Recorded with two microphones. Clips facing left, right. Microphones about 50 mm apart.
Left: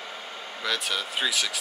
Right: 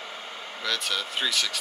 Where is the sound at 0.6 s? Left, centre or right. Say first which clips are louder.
Left 1 dB; centre.